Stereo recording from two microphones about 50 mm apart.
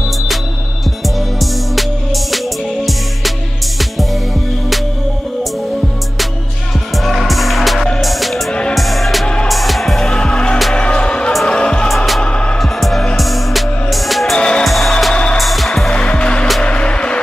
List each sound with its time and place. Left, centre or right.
2.3 s music: centre
7.1 s music: centre
10.0 s music: centre
12.5 s music: centre
15.9 s music: left